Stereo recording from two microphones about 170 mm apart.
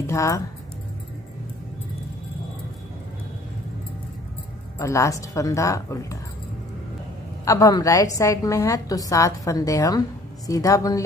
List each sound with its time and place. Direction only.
0.0 s speech: 15° left (ahead or behind)
4.7 s speech: 15° left (ahead or behind)
7.4 s a woman's voice: 20° left (ahead or behind)